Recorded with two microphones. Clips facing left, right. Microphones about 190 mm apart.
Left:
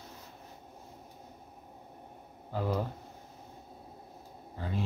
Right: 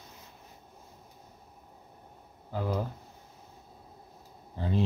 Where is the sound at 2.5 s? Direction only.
Centre (ahead or behind).